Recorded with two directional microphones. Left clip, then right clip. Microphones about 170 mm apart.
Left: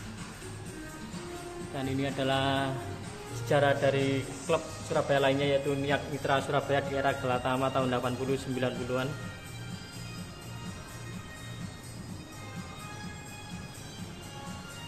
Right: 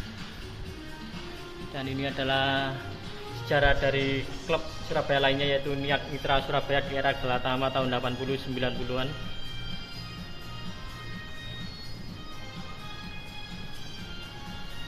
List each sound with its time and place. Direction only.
1.8 s a man's voice: 20° left (ahead or behind)